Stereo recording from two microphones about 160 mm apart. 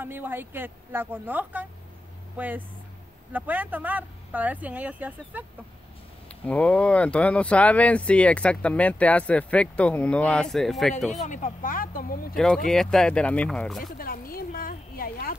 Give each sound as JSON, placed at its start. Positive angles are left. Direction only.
{"t": 0.0, "sound": "speech", "side_deg": -15}
{"t": 6.4, "sound": "speech", "side_deg": 10}
{"t": 11.2, "sound": "speech", "side_deg": 50}
{"t": 12.4, "sound": "speech", "side_deg": 5}
{"t": 13.8, "sound": "a sound", "side_deg": 65}